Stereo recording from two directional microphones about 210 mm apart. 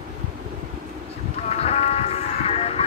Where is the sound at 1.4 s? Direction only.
30° left (ahead or behind).